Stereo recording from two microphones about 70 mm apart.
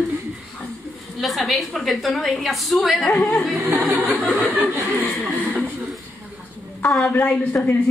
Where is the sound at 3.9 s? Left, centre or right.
Right.